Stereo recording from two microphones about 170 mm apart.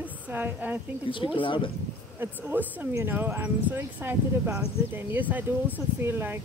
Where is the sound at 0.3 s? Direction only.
10° right (ahead or behind).